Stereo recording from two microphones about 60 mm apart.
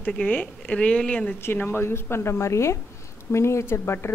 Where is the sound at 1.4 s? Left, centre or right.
Left.